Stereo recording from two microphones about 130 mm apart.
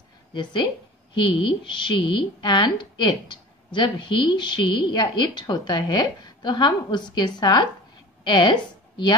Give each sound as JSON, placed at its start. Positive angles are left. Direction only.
{"t": 0.3, "sound": "a woman's voice", "side_deg": 35}